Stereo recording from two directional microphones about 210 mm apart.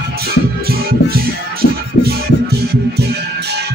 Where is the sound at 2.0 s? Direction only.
55° left (ahead or behind).